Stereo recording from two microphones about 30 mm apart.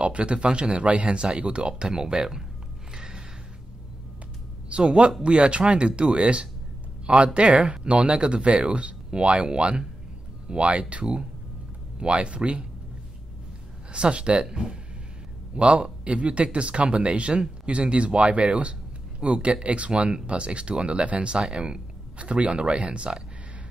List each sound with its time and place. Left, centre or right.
0.0 s speech: right
2.9 s gasp: right
4.6 s speech: right
7.3 s speech: right
7.6 s speech: right
13.9 s a man's voice: right
21.4 s speech: right